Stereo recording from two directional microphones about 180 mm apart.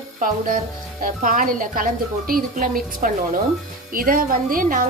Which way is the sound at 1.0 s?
50° right (ahead or behind).